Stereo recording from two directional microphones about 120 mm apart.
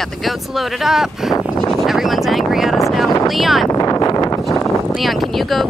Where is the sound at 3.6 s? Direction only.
30° left (ahead or behind).